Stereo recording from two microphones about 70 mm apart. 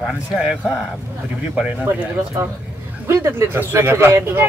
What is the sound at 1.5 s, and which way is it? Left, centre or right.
Speech, centre.